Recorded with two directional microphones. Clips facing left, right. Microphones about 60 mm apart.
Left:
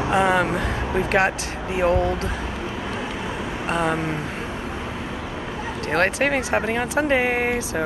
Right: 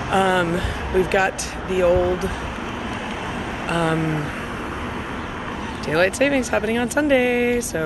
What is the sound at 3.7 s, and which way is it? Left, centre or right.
Speech, left.